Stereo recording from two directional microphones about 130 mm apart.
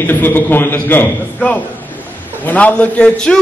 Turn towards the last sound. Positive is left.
turn(degrees=10)  # may be behind; listen again after turning